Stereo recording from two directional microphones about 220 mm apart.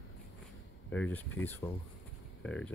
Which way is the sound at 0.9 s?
5° left (ahead or behind).